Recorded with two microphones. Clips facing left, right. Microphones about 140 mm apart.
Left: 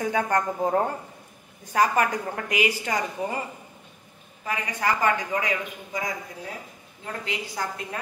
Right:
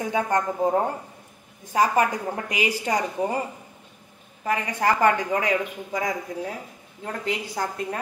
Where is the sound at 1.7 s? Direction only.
25° right (ahead or behind).